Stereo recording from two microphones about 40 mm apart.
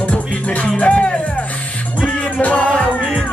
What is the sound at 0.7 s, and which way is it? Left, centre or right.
Music, left.